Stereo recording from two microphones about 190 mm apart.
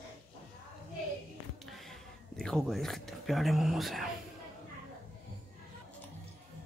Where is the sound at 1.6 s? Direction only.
Centre (ahead or behind).